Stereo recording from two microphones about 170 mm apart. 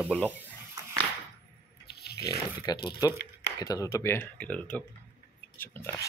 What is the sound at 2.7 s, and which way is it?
Speech, 25° left (ahead or behind).